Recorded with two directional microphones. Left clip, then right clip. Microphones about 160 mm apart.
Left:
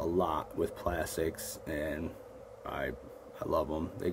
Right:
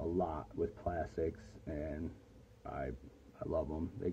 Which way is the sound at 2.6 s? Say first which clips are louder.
Left 6 dB; 30° left (ahead or behind).